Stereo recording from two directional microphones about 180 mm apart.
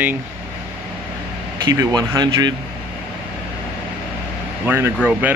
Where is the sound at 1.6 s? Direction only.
20° right (ahead or behind).